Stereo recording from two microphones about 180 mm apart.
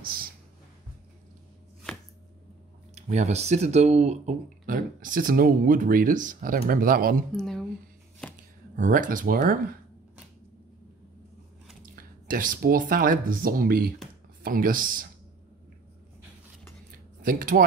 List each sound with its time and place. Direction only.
0.0 s a sound: 55° right (ahead or behind)
2.9 s speech: 35° right (ahead or behind)
7.3 s speech: centre (ahead or behind)
8.2 s a sound: 5° left (ahead or behind)
8.7 s speech: 45° right (ahead or behind)
11.8 s speech: 50° right (ahead or behind)
17.2 s speech: 50° right (ahead or behind)